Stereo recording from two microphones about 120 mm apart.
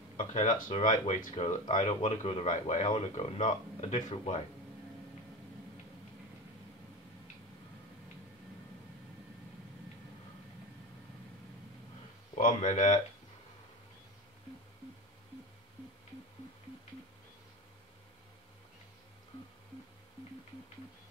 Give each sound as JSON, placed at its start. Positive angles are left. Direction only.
{"t": 0.2, "sound": "speech", "side_deg": 85}
{"t": 12.4, "sound": "speech", "side_deg": 90}